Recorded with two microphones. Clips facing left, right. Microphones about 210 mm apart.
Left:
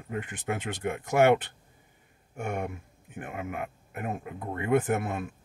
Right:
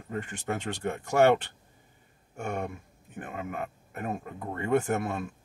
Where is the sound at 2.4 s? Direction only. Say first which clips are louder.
Left 1 dB; 10° left (ahead or behind).